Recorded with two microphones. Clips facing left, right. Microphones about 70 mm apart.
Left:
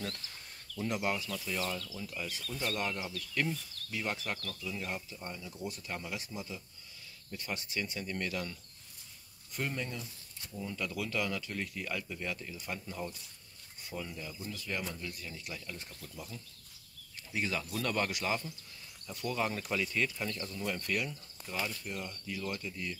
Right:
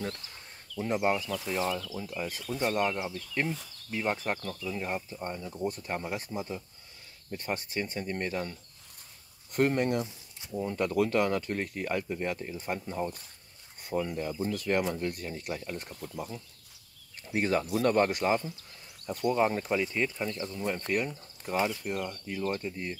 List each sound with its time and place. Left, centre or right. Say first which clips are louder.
0.7 s speech: right 6 dB; right
2.4 s speech: right 8 dB; right
9.5 s speech: right 11 dB; right
10.5 s speech: right 9 dB; right
17.3 s speech: right 8 dB; right
19.2 s speech: right 8 dB; right
21.9 s speech: right 6 dB; right